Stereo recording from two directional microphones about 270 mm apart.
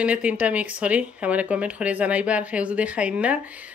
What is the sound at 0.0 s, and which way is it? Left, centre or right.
Speech, centre.